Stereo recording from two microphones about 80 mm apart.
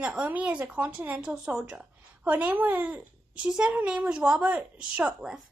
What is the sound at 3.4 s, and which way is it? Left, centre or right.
A woman's voice, centre.